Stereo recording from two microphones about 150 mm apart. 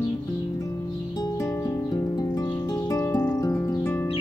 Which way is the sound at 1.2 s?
25° left (ahead or behind).